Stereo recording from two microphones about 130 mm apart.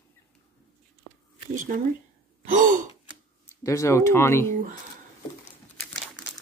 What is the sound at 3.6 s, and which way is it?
Speech, 25° left (ahead or behind).